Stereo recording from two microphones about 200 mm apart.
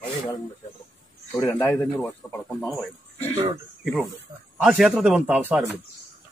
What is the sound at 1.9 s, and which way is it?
Speech, centre (ahead or behind).